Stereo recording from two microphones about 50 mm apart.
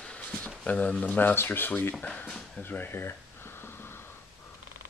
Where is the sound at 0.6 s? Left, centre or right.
Left.